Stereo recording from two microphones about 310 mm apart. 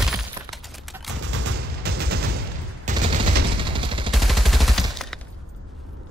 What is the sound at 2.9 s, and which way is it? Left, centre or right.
Fusillade, right.